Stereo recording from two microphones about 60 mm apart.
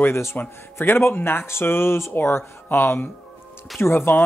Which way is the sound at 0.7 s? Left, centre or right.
Left.